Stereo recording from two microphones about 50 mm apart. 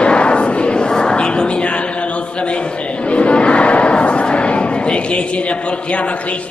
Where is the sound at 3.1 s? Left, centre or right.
Left.